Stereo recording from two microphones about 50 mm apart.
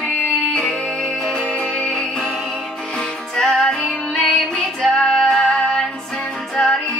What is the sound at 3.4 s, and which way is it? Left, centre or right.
Music, centre.